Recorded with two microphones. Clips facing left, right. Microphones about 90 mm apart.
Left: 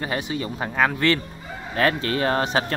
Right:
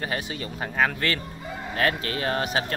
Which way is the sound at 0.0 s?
30° left (ahead or behind).